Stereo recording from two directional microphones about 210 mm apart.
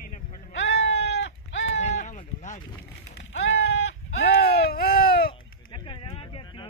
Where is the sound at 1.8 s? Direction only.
35° left (ahead or behind).